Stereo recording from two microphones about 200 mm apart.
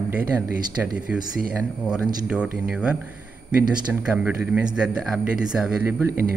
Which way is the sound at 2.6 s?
5° right (ahead or behind).